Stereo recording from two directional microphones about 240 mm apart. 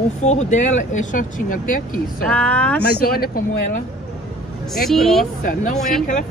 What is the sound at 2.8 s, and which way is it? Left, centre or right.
Speech, left.